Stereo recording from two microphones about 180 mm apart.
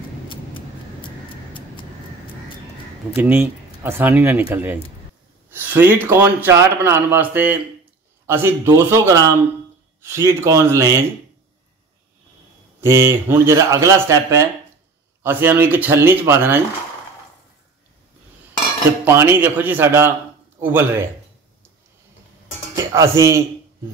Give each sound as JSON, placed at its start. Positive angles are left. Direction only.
{"t": 0.3, "sound": "a sound", "side_deg": 30}
{"t": 3.2, "sound": "a man's voice", "side_deg": -10}
{"t": 12.8, "sound": "a man's voice", "side_deg": -15}
{"t": 19.0, "sound": "a man's voice", "side_deg": -15}
{"t": 22.9, "sound": "a man's voice", "side_deg": -15}